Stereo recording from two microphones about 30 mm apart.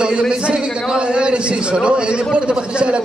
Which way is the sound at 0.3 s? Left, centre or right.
Right.